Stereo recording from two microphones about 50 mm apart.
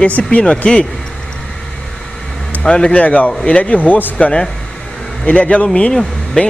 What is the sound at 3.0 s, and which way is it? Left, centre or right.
Speech, left.